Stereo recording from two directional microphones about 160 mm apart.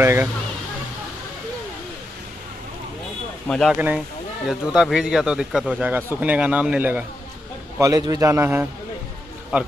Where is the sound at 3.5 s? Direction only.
5° left (ahead or behind).